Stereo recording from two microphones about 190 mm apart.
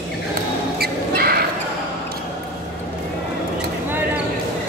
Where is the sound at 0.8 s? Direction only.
55° right (ahead or behind).